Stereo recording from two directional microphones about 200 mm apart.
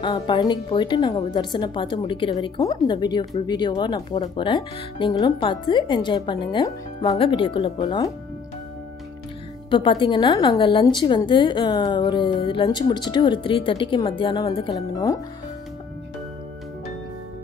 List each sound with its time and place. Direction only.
0.0 s a woman's voice: 25° left (ahead or behind)
9.7 s a woman's voice: 25° left (ahead or behind)